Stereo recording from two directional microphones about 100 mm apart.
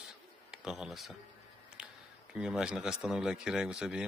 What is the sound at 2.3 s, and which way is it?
Speech, 5° right (ahead or behind).